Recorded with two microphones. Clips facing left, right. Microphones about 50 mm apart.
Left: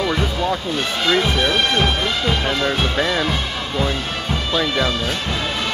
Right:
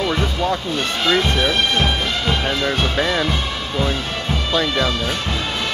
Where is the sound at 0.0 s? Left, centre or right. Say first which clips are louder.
Even; centre.